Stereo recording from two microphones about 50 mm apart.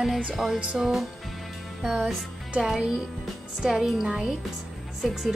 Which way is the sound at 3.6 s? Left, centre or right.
Centre.